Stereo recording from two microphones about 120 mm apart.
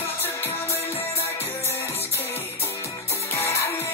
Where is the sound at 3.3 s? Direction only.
20° left (ahead or behind).